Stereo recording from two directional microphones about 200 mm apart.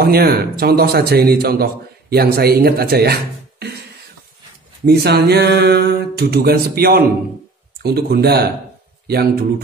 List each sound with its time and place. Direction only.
0.0 s a man's voice: 50° right (ahead or behind)
4.8 s a man's voice: 55° right (ahead or behind)